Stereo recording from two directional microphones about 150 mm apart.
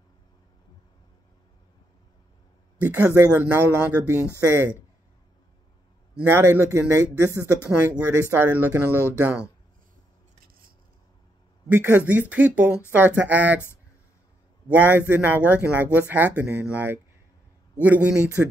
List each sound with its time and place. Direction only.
2.8 s speech: 10° right (ahead or behind)
6.1 s speech: 10° right (ahead or behind)
12.1 s speech: 10° right (ahead or behind)
14.7 s speech: 10° right (ahead or behind)